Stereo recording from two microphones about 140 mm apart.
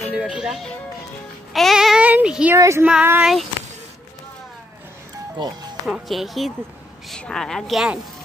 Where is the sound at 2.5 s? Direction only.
20° right (ahead or behind).